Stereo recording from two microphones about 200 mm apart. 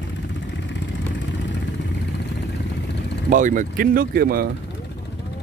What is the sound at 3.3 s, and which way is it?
Speech, 40° right (ahead or behind).